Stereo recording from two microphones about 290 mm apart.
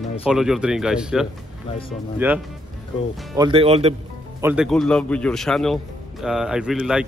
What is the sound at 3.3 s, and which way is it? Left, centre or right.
Speech, centre.